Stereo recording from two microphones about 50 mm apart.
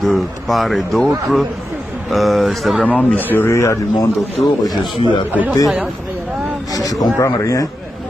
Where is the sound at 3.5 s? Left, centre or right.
Left.